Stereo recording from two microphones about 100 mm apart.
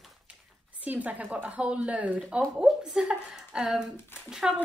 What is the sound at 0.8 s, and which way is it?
A woman's voice, 15° right (ahead or behind).